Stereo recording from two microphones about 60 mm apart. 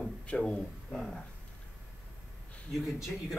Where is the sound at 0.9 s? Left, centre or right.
Centre.